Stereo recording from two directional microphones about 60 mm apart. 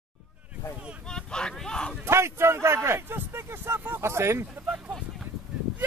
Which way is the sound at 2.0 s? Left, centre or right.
Right.